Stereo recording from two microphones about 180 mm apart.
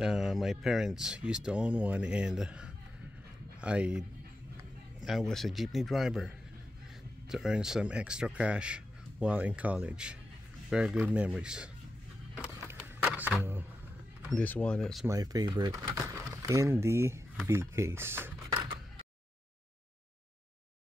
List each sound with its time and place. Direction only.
0.0 s speech: centre (ahead or behind)
5.0 s speech: centre (ahead or behind)
12.5 s a sound: 15° right (ahead or behind)
14.3 s speech: 10° left (ahead or behind)
15.0 s speech: 20° right (ahead or behind)
18.5 s a sound: 25° right (ahead or behind)